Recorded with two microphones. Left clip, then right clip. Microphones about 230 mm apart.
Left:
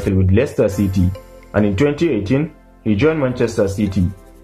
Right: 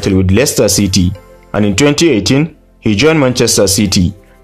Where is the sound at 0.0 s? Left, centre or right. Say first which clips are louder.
Right 6 dB; right.